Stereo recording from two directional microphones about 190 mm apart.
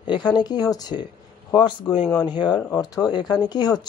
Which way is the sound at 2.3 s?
25° left (ahead or behind).